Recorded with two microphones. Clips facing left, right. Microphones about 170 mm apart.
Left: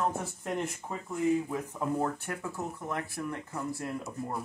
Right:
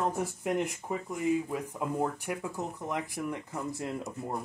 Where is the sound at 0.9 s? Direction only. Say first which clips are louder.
Left 2 dB; 15° right (ahead or behind).